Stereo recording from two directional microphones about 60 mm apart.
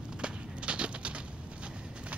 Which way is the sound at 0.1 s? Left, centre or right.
Centre.